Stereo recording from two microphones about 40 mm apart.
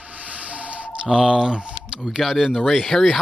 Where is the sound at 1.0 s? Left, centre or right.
Right.